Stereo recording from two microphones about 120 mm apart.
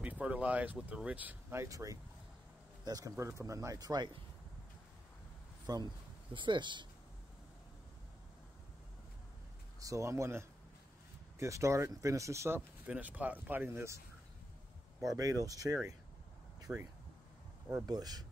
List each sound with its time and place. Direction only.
0.0 s speech: 10° right (ahead or behind); by 4.2 s 35° right (ahead or behind)
5.7 s speech: 35° right (ahead or behind)
9.8 s speech: 25° right (ahead or behind)
15.1 s speech: 30° right (ahead or behind)
16.7 s speech: 15° right (ahead or behind)
17.8 s speech: 30° right (ahead or behind)